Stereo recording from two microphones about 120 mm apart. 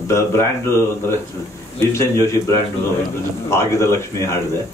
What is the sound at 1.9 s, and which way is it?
Speech, 20° left (ahead or behind).